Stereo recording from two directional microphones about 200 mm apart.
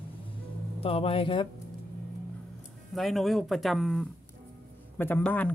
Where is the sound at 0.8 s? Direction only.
30° left (ahead or behind).